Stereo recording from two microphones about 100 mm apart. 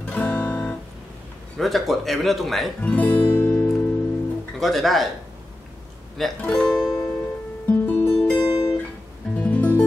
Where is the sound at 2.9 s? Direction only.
15° left (ahead or behind).